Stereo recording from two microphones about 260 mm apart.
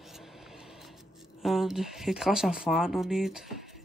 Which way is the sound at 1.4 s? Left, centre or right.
Centre.